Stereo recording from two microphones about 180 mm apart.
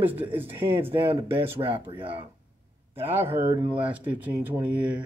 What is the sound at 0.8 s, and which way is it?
Speech, 30° right (ahead or behind).